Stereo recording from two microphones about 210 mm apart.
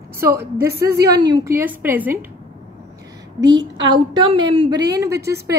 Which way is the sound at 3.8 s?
25° right (ahead or behind).